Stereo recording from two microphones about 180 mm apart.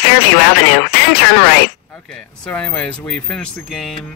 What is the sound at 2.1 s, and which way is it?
Speech, 5° left (ahead or behind).